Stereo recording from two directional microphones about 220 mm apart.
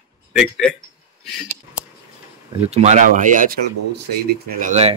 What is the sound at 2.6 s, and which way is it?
Speech, 30° right (ahead or behind).